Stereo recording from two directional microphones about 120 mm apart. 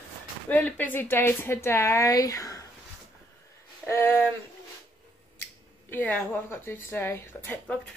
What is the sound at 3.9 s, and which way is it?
Speech, 20° left (ahead or behind).